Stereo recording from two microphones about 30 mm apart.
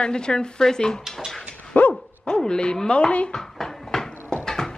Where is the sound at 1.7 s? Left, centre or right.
Left.